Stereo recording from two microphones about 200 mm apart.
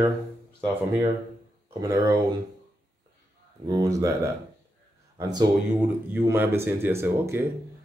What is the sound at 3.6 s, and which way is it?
Speech, 15° right (ahead or behind).